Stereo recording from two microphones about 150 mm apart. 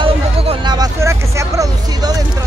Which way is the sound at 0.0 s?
35° right (ahead or behind).